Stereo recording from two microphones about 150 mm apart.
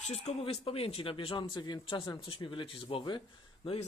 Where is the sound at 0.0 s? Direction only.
45° left (ahead or behind).